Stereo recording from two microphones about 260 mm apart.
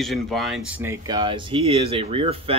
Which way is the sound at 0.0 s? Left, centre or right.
Centre.